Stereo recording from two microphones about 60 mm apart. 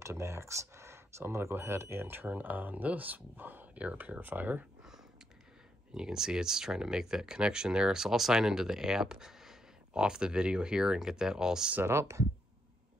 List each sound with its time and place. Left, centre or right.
0.0 s speech: right
5.9 s speech: centre
11.8 s speech: right